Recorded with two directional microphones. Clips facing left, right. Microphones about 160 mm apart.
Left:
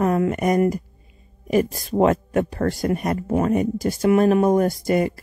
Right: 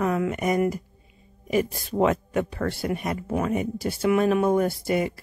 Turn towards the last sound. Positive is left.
turn(degrees=45)  # may be behind; listen again after turning